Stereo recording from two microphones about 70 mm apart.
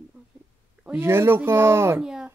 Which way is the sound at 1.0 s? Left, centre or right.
Right.